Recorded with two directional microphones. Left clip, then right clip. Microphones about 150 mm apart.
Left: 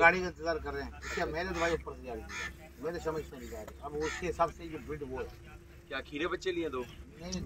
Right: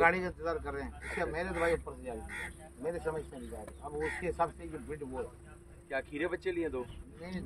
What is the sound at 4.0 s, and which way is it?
Speech, 30° right (ahead or behind).